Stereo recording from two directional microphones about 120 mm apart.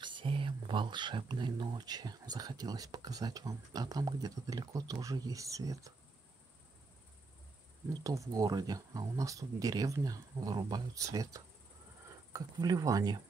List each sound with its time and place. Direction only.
0.0 s speech: 45° right (ahead or behind); by 5.9 s 25° right (ahead or behind)
7.9 s speech: 30° right (ahead or behind)